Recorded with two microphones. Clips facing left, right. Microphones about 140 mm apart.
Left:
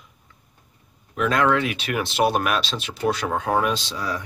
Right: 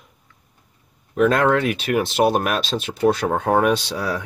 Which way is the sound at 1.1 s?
45° right (ahead or behind).